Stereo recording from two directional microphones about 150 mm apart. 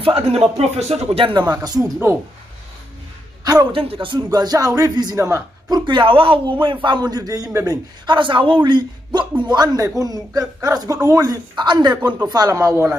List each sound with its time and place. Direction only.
0.0 s a man's voice: 40° right (ahead or behind)
3.7 s a man's voice: 40° right (ahead or behind); by 5.8 s 20° right (ahead or behind)
5.9 s a man's voice: 35° right (ahead or behind)